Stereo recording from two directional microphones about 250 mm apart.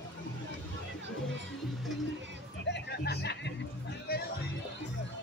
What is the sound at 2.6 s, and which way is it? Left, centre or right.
Music, left.